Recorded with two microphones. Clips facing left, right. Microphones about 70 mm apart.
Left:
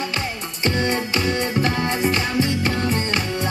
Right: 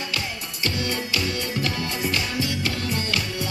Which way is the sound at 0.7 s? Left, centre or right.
Left.